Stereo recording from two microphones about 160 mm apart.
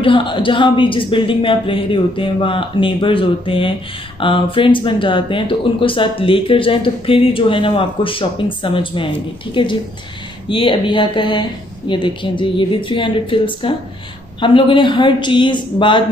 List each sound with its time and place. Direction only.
0.0 s speech: 30° left (ahead or behind)